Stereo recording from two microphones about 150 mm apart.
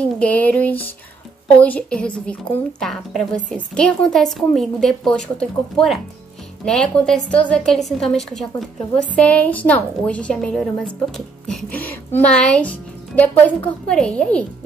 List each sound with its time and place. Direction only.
0.0 s a woman's voice: 10° left (ahead or behind)